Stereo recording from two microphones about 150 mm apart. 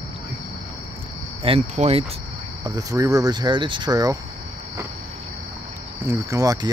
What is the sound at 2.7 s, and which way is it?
Speech, 25° right (ahead or behind).